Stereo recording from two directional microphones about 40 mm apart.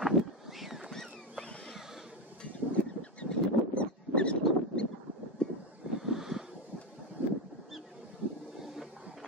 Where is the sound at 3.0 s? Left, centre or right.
Left.